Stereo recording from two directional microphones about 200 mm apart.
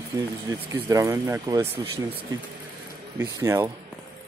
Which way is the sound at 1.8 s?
25° right (ahead or behind).